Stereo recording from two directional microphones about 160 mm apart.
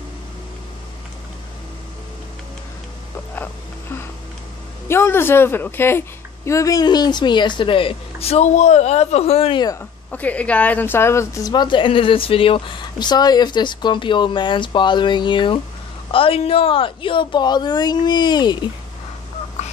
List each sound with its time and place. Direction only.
4.8 s speech: 15° left (ahead or behind); by 9.7 s 35° left (ahead or behind)
9.7 s speech: 10° left (ahead or behind)
19.6 s duck: 45° left (ahead or behind)